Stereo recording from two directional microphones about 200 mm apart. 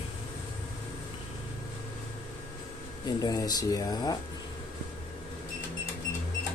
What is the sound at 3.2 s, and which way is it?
Speech, 20° left (ahead or behind).